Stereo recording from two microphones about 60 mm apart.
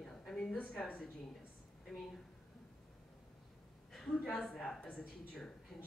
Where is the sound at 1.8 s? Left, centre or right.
Centre.